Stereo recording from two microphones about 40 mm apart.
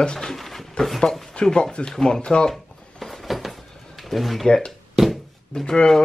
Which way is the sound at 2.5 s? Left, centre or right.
Centre.